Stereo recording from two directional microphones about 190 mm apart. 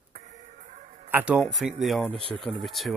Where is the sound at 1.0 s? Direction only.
10° right (ahead or behind).